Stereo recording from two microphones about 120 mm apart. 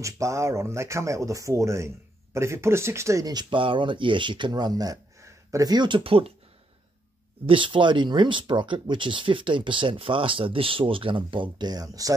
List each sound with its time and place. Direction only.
0.0 s speech: 25° right (ahead or behind); by 6.3 s 50° right (ahead or behind)
7.4 s speech: 45° right (ahead or behind)